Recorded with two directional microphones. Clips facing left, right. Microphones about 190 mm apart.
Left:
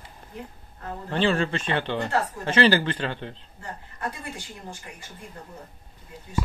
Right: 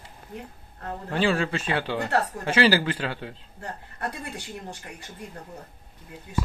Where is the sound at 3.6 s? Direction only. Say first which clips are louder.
Right 1 dB; 65° right (ahead or behind).